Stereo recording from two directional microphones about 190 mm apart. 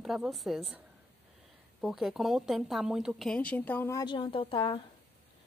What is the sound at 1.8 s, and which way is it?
A woman's voice, centre (ahead or behind).